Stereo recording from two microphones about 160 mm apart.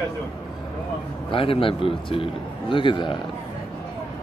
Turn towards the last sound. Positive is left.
turn(degrees=30)  # may be behind; listen again after turning